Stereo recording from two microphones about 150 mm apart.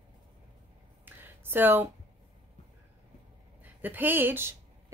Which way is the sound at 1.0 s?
15° right (ahead or behind).